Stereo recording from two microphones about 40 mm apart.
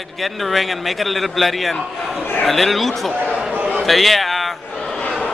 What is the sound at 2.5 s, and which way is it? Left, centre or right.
A man's voice, centre.